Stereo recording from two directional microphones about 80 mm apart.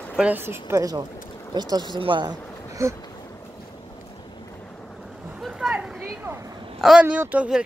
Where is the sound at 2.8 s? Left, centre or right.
Right.